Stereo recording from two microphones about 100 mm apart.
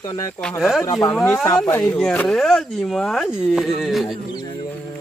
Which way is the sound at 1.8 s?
10° left (ahead or behind).